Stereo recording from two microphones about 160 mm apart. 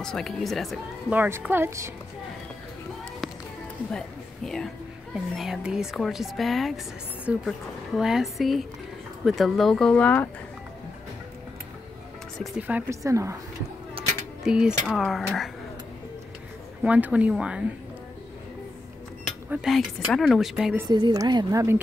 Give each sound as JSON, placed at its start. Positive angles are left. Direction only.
{"t": 0.0, "sound": "speech", "side_deg": 5}
{"t": 1.1, "sound": "speech", "side_deg": -10}
{"t": 5.1, "sound": "speech", "side_deg": -5}
{"t": 12.4, "sound": "speech", "side_deg": -10}
{"t": 14.4, "sound": "mechanisms", "side_deg": -5}
{"t": 14.9, "sound": "speech", "side_deg": 0}
{"t": 16.8, "sound": "speech", "side_deg": -10}
{"t": 19.5, "sound": "speech", "side_deg": 0}
{"t": 20.9, "sound": "a woman's voice", "side_deg": -25}